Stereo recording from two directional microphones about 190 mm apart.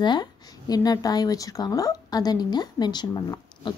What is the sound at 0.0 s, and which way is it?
A woman's voice, 20° left (ahead or behind).